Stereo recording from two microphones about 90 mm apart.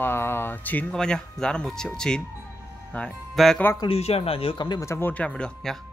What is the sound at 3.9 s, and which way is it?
Speech, 90° left.